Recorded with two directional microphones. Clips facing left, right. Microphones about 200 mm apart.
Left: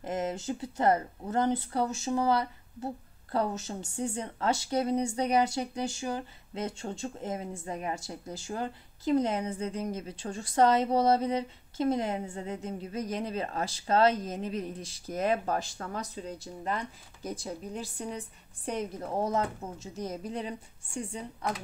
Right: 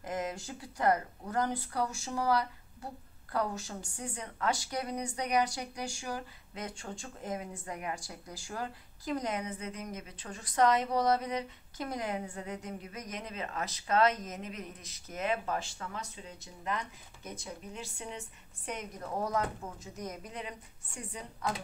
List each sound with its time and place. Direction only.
0.0 s a woman's voice: 25° left (ahead or behind)